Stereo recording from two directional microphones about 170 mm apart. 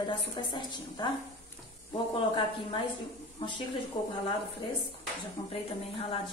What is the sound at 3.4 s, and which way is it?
Speech, 30° left (ahead or behind).